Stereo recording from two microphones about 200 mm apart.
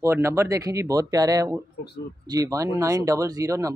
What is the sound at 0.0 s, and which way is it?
Speech, 15° right (ahead or behind).